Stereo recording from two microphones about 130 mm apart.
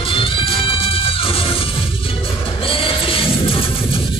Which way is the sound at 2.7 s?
45° left (ahead or behind).